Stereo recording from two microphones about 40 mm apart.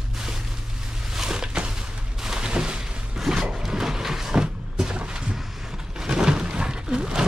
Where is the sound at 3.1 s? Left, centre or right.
Centre.